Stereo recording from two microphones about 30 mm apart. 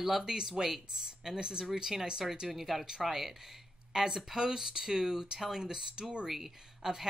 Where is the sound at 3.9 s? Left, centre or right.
Right.